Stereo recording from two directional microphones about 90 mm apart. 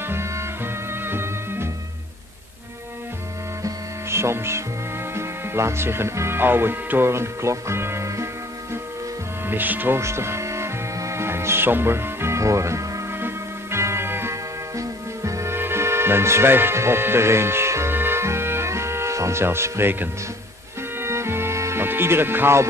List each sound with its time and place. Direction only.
1.0 s music: 25° right (ahead or behind)
3.6 s music: 30° right (ahead or behind)
5.1 s speech: 30° right (ahead or behind)
9.5 s music: 20° right (ahead or behind)